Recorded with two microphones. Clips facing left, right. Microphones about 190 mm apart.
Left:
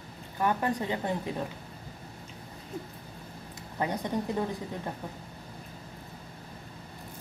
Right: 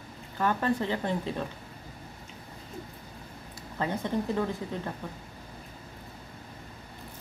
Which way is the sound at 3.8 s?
15° left (ahead or behind).